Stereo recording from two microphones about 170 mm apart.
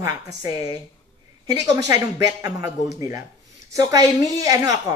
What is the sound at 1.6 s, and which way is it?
Speech, 20° right (ahead or behind).